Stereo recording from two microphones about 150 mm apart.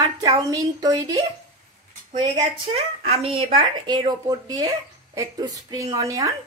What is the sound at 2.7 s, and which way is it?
Speech, 40° right (ahead or behind).